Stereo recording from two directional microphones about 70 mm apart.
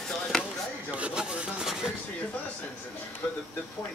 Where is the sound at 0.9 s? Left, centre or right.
Centre.